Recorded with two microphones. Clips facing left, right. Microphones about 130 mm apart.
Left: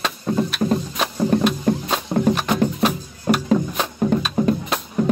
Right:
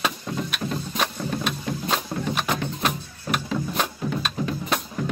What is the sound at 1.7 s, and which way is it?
Music, 45° left (ahead or behind).